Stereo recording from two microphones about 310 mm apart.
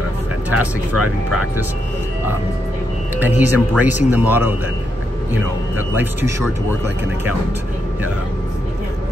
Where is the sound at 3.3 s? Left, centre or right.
Left.